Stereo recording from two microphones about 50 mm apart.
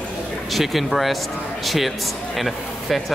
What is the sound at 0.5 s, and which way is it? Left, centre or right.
A man's voice, centre.